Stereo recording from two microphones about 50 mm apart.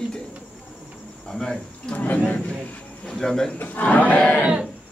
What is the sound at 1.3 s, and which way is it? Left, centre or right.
Insect, centre.